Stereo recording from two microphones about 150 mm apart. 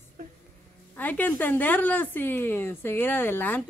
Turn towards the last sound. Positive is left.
turn(degrees=10)  # may be behind; listen again after turning